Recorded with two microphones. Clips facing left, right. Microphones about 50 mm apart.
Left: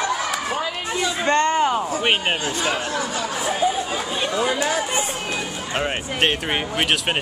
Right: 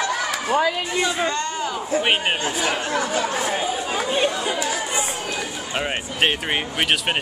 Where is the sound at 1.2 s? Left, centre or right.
Left.